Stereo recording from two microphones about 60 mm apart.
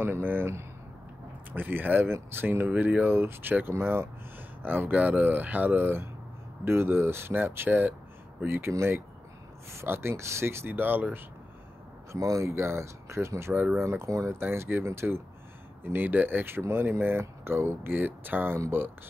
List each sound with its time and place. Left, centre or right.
0.0 s speech: right
1.5 s speech: right
4.6 s speech: right
12.1 s speech: right
14.4 s speech: right
15.8 s speech: right